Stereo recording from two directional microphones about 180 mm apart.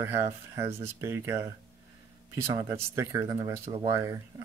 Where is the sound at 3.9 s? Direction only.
15° right (ahead or behind).